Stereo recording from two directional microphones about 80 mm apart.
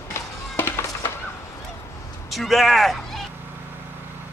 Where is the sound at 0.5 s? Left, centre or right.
Left.